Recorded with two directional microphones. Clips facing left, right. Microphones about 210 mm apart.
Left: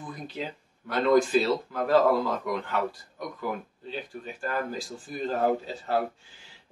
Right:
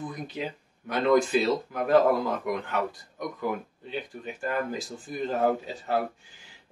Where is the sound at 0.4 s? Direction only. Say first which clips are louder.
Right 1 dB; 15° right (ahead or behind).